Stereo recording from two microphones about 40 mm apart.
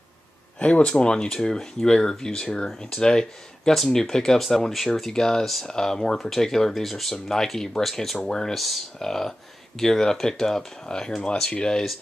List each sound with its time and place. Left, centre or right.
0.6 s speech: left; by 8.2 s centre
8.3 s speech: centre
8.5 s speech: centre
9.0 s speech: centre